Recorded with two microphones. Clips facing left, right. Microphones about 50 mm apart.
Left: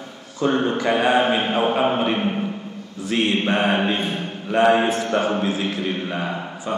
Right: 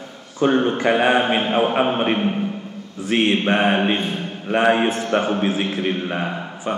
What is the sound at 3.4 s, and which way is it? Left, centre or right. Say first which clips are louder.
A man's voice: right 2 dB; centre.